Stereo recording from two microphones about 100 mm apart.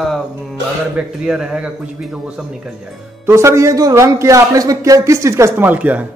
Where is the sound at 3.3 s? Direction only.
30° right (ahead or behind).